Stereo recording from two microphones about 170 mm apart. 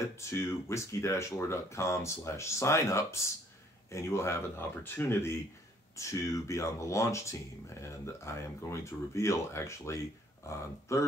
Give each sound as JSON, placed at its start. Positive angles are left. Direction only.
{"t": 0.2, "sound": "speech", "side_deg": 15}